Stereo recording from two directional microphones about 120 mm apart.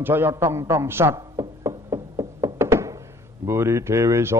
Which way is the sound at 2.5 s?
20° right (ahead or behind).